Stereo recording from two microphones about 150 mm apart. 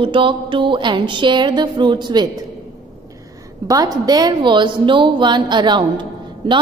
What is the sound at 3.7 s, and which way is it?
A woman's voice, 25° right (ahead or behind).